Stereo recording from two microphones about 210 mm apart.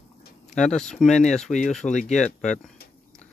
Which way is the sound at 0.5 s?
5° left (ahead or behind).